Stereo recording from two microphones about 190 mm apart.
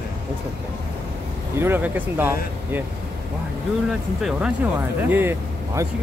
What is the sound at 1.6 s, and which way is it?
Speech, 10° right (ahead or behind).